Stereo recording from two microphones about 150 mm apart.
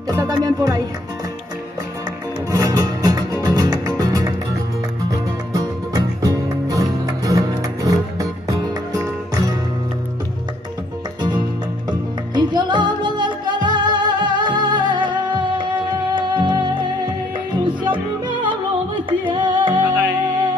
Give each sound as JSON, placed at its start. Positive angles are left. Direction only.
{"t": 0.1, "sound": "music", "side_deg": -25}
{"t": 2.5, "sound": "music", "side_deg": -25}
{"t": 5.5, "sound": "music", "side_deg": -25}
{"t": 12.4, "sound": "music", "side_deg": -30}
{"t": 19.0, "sound": "music", "side_deg": -30}